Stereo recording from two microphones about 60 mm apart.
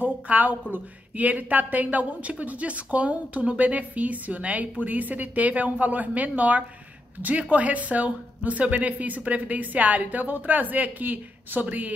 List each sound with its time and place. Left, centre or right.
0.0 s speech: right